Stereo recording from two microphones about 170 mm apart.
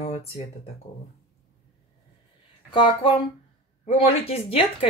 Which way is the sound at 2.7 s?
30° left (ahead or behind).